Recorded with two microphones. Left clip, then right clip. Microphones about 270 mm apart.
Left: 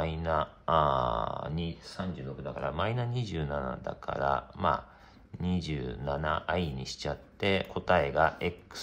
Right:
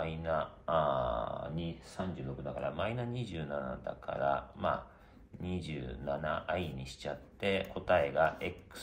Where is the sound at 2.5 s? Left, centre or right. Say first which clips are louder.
Left 4 dB; left.